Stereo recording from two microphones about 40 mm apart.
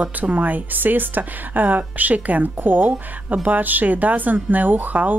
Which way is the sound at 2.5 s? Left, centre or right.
Right.